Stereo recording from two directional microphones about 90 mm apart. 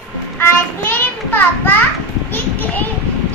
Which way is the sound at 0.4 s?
20° left (ahead or behind).